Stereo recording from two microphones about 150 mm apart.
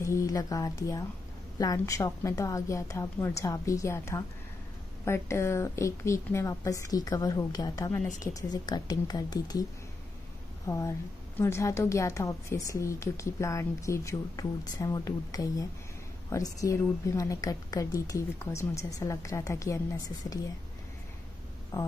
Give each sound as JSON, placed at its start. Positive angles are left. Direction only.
{"t": 0.0, "sound": "a woman's voice", "side_deg": 20}
{"t": 10.7, "sound": "a woman's voice", "side_deg": 20}
{"t": 21.7, "sound": "a woman's voice", "side_deg": 20}